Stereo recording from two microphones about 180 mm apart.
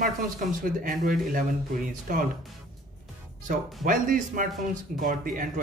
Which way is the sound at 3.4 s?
50° right (ahead or behind).